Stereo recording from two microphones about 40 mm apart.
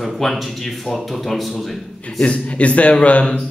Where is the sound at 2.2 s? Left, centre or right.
Left.